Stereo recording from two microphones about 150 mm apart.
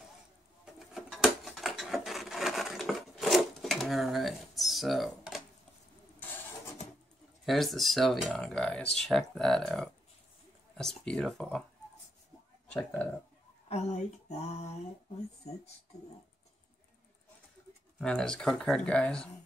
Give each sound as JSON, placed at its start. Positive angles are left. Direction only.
{"t": 0.7, "sound": "wood", "side_deg": 0}
{"t": 6.1, "sound": "vehicle", "side_deg": 15}
{"t": 7.4, "sound": "speech", "side_deg": 0}
{"t": 12.7, "sound": "speech", "side_deg": 10}
{"t": 13.7, "sound": "a sound", "side_deg": 45}
{"t": 18.0, "sound": "speech", "side_deg": 5}